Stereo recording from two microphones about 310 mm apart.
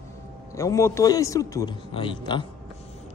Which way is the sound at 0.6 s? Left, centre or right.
Centre.